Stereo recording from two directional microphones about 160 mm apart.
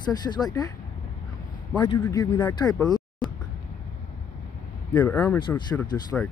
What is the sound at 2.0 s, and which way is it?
Speech, 25° left (ahead or behind).